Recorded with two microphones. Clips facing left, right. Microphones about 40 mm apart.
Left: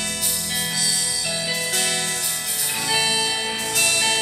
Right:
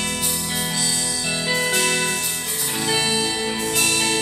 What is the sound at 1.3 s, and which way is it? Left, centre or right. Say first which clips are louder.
Music: right 6 dB; right.